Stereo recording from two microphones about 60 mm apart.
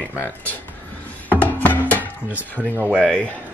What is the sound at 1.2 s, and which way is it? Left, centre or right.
Music, left.